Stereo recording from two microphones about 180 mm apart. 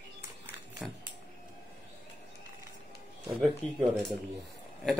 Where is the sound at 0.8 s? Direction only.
Centre (ahead or behind).